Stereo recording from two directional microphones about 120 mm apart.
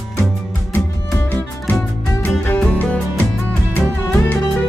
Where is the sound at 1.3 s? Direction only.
15° left (ahead or behind).